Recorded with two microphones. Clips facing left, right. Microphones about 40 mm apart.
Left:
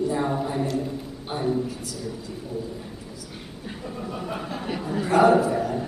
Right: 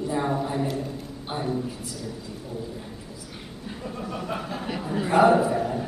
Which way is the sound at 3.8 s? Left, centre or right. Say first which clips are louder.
Even; centre.